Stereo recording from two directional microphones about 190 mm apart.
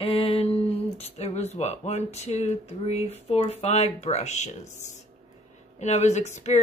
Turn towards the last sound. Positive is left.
turn(degrees=35)  # may be behind; listen again after turning